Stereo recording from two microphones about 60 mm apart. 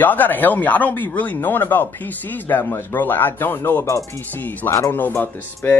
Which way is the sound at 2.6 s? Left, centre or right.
Left.